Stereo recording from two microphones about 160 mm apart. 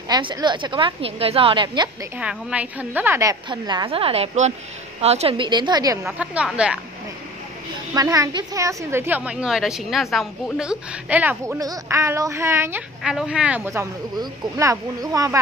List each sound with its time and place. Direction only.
0.1 s a woman's voice: 30° right (ahead or behind)
2.1 s a woman's voice: 10° right (ahead or behind); by 5.5 s 40° right (ahead or behind)
5.5 s a woman's voice: 25° right (ahead or behind)
6.1 s a woman's voice: 5° right (ahead or behind)
7.9 s a woman's voice: 20° right (ahead or behind)
13.0 s a woman's voice: 5° right (ahead or behind)
13.7 s a woman's voice: 20° right (ahead or behind)